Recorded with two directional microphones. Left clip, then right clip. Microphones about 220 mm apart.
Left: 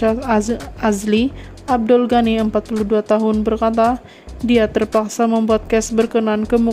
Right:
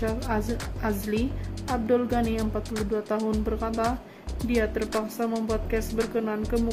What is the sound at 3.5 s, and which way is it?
Speech, 35° left (ahead or behind).